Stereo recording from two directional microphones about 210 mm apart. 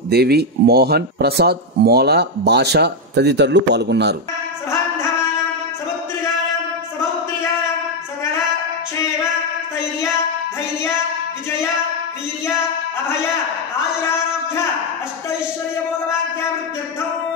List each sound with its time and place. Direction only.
0.1 s speech: 50° right (ahead or behind)